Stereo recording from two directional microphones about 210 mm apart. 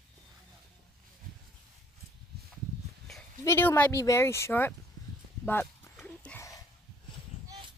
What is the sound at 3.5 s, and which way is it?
Speech, 10° left (ahead or behind).